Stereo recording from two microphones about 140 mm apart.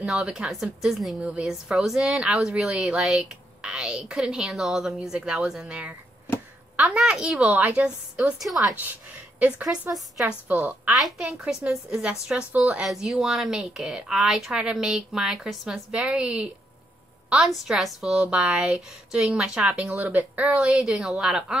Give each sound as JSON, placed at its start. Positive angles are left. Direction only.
{"t": 0.0, "sound": "a woman's voice", "side_deg": -5}